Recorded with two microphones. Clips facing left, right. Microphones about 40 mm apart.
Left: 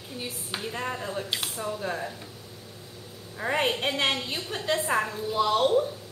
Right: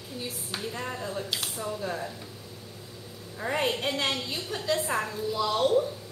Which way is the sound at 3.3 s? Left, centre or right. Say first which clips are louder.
Left 2 dB; left.